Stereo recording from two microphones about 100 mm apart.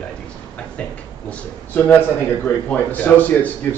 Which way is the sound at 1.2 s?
15° left (ahead or behind).